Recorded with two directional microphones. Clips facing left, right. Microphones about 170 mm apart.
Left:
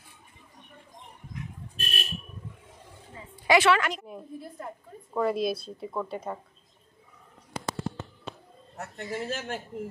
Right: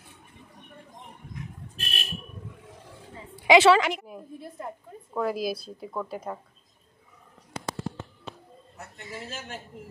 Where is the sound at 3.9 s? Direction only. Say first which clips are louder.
Right 2 dB; 5° right (ahead or behind).